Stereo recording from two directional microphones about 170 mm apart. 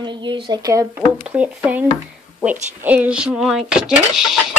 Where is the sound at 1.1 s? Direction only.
5° right (ahead or behind).